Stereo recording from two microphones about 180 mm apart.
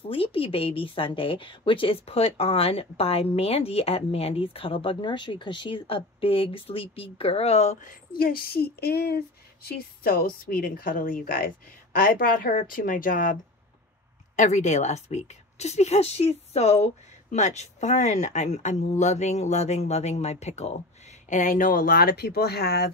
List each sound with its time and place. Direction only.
0.1 s a woman's voice: 30° left (ahead or behind)
8.2 s a woman's voice: 55° left (ahead or behind)